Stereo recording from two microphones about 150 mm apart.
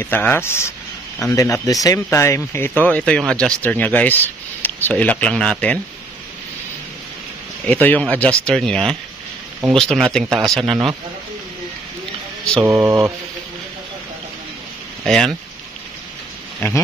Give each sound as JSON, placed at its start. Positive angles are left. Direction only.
{"t": 0.0, "sound": "speech", "side_deg": 15}
{"t": 7.6, "sound": "speech", "side_deg": 10}
{"t": 12.6, "sound": "mantra", "side_deg": -15}
{"t": 15.0, "sound": "speech", "side_deg": 0}
{"t": 16.5, "sound": "speech", "side_deg": 10}